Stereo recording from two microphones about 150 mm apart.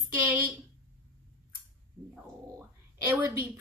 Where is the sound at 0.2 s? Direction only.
10° right (ahead or behind).